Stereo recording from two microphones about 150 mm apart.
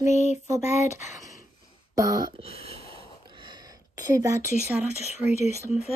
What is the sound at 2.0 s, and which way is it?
Speech, 25° right (ahead or behind).